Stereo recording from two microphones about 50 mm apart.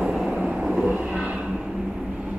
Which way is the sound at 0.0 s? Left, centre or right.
Centre.